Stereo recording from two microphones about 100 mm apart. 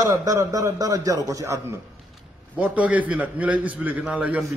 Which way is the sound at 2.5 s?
15° right (ahead or behind).